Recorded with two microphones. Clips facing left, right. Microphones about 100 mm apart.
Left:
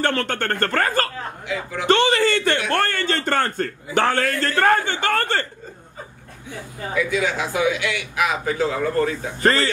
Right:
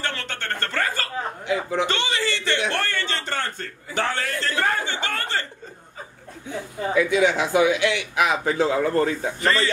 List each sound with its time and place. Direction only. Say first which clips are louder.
0.0 s a man's voice: left 8 dB; 50° left (ahead or behind)
1.5 s speech: right 4 dB; 25° right (ahead or behind)
1.9 s a man's voice: left 8 dB; 45° left (ahead or behind)
7.0 s speech: right 3 dB; 25° right (ahead or behind)